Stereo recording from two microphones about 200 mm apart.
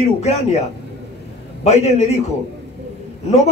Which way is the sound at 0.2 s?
35° left (ahead or behind).